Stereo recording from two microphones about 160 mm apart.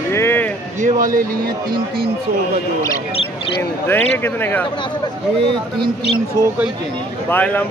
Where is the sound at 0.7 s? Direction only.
55° right (ahead or behind).